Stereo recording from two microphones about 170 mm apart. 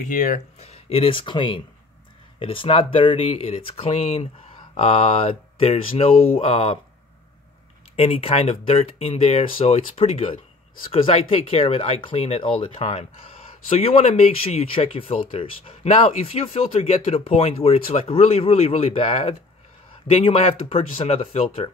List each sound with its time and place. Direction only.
0.1 s speech: 50° left (ahead or behind)
7.9 s speech: 35° left (ahead or behind)